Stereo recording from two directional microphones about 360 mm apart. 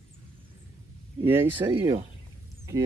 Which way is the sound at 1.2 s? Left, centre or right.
Centre.